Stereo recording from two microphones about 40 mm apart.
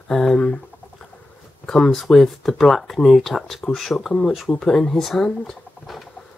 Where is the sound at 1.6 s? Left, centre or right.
Centre.